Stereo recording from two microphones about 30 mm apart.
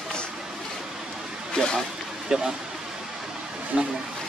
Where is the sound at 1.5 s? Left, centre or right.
Left.